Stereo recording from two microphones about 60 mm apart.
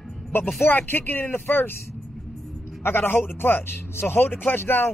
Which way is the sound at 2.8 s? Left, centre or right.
Left.